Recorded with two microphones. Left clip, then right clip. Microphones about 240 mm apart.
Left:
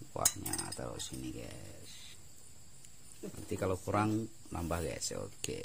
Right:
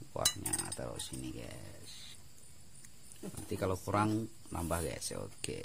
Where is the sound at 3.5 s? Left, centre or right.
Centre.